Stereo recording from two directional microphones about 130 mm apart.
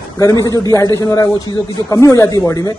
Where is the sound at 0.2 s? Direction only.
25° left (ahead or behind).